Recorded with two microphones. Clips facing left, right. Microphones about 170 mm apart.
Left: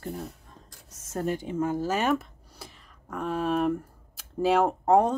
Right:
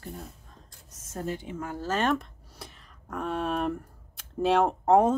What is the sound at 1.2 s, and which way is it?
Speech, 45° left (ahead or behind).